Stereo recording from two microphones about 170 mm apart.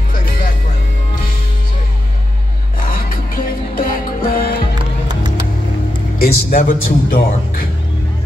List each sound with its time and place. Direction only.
0.1 s music: 55° left (ahead or behind)
2.8 s music: 55° left (ahead or behind)
6.1 s speech: 55° left (ahead or behind)